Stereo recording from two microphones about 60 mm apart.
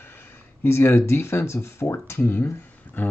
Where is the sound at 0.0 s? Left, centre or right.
Left.